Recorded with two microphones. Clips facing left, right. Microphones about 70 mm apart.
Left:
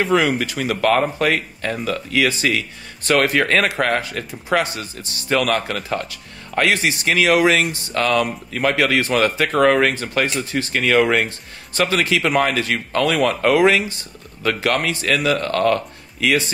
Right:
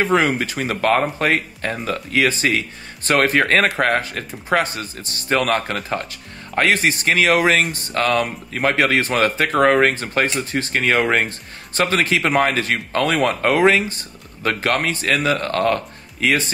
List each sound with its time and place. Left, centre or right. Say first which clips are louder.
0.0 s speech: even; right